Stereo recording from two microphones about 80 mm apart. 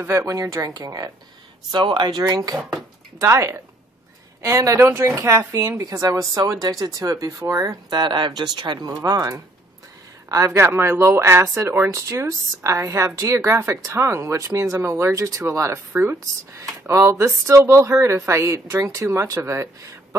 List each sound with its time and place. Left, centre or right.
0.0 s a woman's voice: right
1.7 s speech: right
3.2 s a woman's voice: right
7.9 s speech: right
10.3 s a woman's voice: right